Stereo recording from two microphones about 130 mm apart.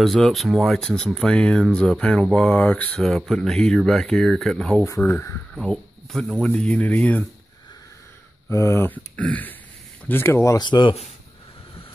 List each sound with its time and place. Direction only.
0.0 s speech: centre (ahead or behind)
5.5 s speech: 5° left (ahead or behind)
8.5 s speech: 20° left (ahead or behind)
10.6 s speech: 35° left (ahead or behind)